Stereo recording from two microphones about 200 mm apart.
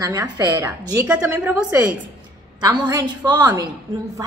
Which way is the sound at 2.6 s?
20° right (ahead or behind).